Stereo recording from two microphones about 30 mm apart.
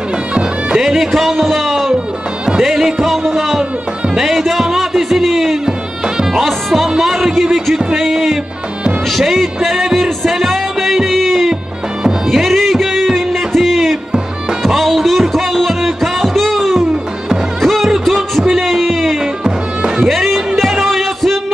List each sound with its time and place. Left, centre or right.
0.7 s music: centre
7.0 s music: centre
9.9 s music: centre